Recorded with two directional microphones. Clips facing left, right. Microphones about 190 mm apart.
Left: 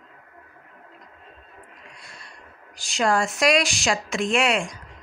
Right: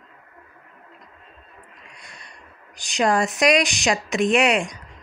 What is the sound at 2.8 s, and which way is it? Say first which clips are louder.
Speech: right 2 dB; 20° right (ahead or behind).